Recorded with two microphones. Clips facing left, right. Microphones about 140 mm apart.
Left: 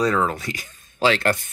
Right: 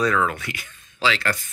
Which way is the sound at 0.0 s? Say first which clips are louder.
Left 1 dB; 30° left (ahead or behind).